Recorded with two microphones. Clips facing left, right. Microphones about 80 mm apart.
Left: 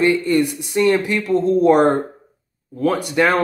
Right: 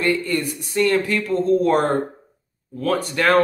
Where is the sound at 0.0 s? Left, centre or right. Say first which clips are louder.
Left 5 dB; centre.